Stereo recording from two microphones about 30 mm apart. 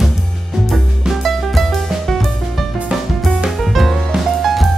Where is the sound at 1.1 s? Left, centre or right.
Centre.